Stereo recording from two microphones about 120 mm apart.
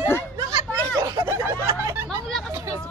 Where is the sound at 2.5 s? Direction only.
20° right (ahead or behind).